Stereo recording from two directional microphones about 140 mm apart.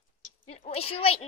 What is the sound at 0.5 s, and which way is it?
Speech, 45° left (ahead or behind).